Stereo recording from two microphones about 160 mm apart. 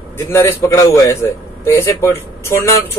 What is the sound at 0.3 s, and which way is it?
A man's voice, 20° left (ahead or behind).